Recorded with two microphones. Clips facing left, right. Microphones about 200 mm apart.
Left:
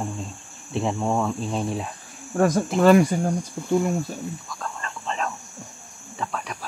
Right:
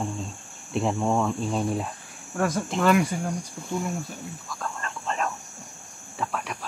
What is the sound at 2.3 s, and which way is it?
Cricket, 40° left (ahead or behind).